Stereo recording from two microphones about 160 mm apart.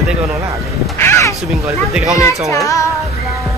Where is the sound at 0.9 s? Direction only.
15° left (ahead or behind).